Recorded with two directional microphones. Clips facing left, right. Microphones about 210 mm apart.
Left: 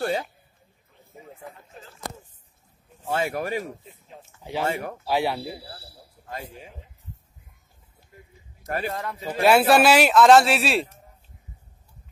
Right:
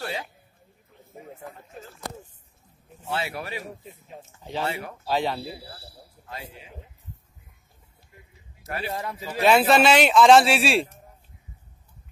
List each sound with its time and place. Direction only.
3.1 s speech: 45° left (ahead or behind)
4.4 s speech: 15° left (ahead or behind)
4.6 s speech: 45° left (ahead or behind)
5.0 s speech: 10° left (ahead or behind)
6.2 s speech: 45° left (ahead or behind)
8.6 s speech: 45° left (ahead or behind)
8.9 s speech: 5° right (ahead or behind)